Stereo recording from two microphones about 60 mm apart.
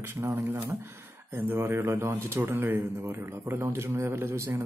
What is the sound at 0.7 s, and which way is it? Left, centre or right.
A man's voice, right.